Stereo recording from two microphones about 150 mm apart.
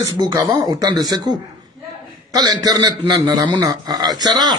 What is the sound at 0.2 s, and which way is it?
Speech, 25° right (ahead or behind).